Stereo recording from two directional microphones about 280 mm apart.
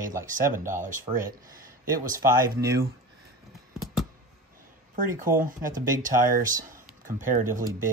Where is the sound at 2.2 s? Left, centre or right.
Centre.